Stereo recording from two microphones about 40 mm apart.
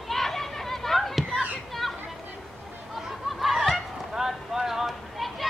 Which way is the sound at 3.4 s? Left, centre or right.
Centre.